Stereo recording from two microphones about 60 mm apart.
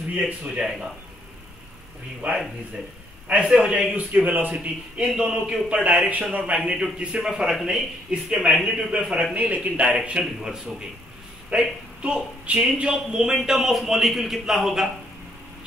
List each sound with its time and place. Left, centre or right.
0.2 s speech: centre
2.2 s a man's voice: right
5.0 s a man's voice: centre
9.3 s a man's voice: right; by 14.9 s centre